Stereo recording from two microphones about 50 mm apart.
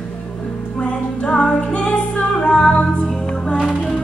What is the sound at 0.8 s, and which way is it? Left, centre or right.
Music, centre.